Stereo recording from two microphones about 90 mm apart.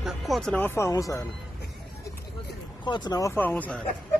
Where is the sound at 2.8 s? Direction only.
55° left (ahead or behind).